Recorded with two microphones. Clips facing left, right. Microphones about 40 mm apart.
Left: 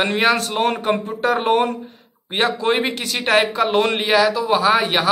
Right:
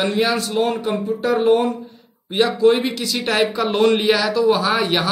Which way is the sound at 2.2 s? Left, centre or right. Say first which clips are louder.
Right 4 dB; left.